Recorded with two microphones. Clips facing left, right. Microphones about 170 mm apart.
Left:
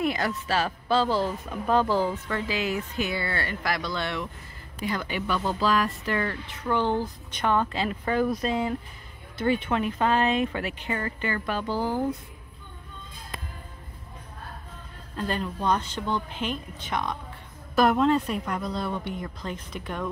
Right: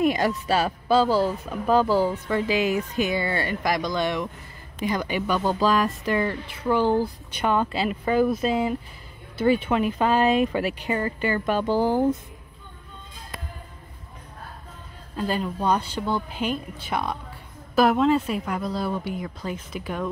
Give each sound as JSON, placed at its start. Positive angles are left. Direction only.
{"t": 0.0, "sound": "speech", "side_deg": -15}
{"t": 10.9, "sound": "speech", "side_deg": -25}
{"t": 15.1, "sound": "a woman's voice", "side_deg": -5}